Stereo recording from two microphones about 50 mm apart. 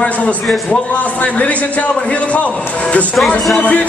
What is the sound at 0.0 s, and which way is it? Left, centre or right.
A man's voice, left.